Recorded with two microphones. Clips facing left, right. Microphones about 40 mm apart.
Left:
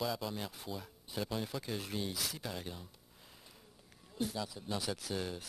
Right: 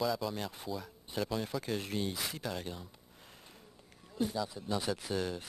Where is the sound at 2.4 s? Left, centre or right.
Centre.